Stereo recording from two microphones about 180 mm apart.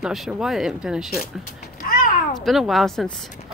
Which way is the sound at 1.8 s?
50° left (ahead or behind).